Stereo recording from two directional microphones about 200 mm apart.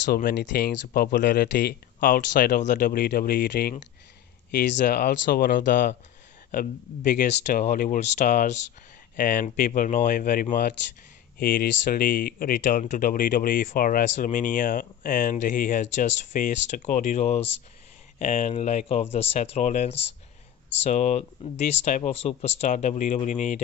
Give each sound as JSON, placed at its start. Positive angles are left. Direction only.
{"t": 0.1, "sound": "speech", "side_deg": 50}